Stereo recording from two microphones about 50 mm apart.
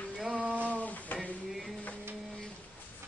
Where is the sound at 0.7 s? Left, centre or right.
Left.